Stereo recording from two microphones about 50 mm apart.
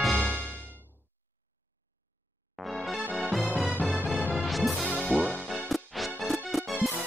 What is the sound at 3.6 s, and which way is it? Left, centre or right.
Music, right.